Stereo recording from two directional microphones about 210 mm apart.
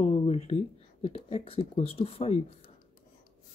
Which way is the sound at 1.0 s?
25° left (ahead or behind).